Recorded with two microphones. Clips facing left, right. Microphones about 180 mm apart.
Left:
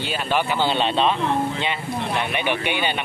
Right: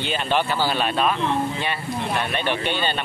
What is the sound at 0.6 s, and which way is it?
Speech, 25° left (ahead or behind).